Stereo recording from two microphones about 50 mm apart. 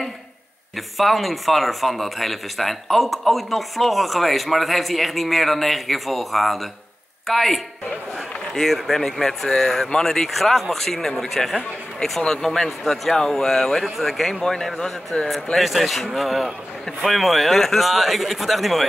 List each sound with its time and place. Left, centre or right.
0.7 s speech: centre
15.1 s speech: left
15.5 s speech: centre